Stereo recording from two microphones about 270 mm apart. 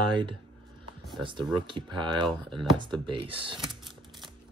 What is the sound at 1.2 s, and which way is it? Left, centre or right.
Speech, centre.